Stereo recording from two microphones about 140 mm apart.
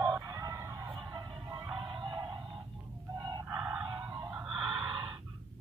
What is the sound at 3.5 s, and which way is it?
Music, 15° right (ahead or behind).